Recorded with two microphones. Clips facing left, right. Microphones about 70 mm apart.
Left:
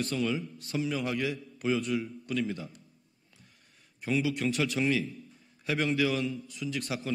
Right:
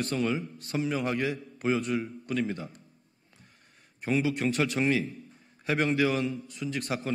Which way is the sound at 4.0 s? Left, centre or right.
Right.